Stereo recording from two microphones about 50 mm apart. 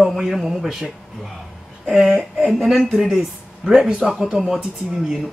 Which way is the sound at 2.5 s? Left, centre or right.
Centre.